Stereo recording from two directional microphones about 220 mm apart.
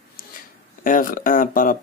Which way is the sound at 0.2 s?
40° left (ahead or behind).